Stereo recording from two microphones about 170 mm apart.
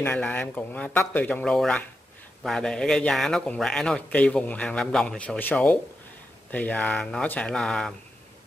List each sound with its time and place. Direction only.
0.0 s a man's voice: 10° left (ahead or behind)